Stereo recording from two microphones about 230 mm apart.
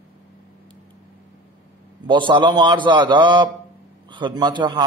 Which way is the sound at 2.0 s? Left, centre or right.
Right.